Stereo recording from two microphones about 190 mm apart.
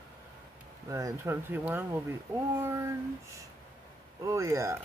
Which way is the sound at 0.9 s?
15° right (ahead or behind).